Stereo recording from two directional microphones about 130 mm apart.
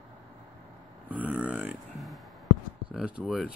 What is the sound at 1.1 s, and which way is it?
Burping, 10° right (ahead or behind).